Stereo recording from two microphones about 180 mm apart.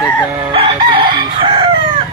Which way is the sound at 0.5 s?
30° right (ahead or behind).